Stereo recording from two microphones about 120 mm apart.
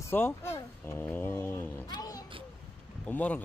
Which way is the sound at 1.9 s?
30° left (ahead or behind).